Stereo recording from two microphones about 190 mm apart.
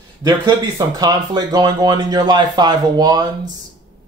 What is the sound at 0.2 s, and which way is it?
Speech, 20° right (ahead or behind).